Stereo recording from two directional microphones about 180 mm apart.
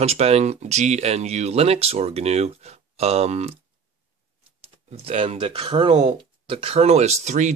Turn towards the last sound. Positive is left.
turn(degrees=-40)  # may be behind; listen again after turning